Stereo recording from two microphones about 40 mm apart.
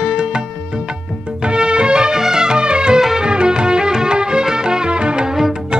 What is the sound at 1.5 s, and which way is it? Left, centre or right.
Music, right.